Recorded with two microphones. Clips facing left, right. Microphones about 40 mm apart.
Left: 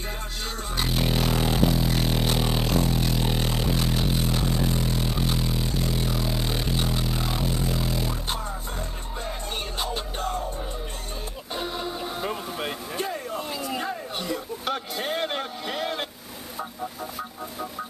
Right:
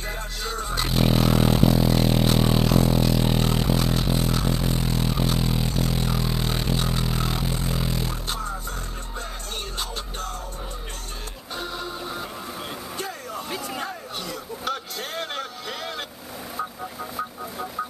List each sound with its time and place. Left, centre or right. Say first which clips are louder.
0.5 s music: right 2 dB; centre
3.2 s a sound: right 3 dB; centre
4.9 s music: right 2 dB; centre
5.4 s music: right 3 dB; centre
5.8 s music: right 2 dB; centre
8.3 s music: right 1 dB; centre
11.5 s music: left 1 dB; centre
12.3 s vehicle: left 4 dB; left
12.9 s vehicle: left 2 dB; centre
13.7 s a sound: left 2 dB; centre